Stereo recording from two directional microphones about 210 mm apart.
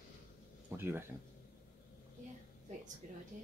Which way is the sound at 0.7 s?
10° right (ahead or behind).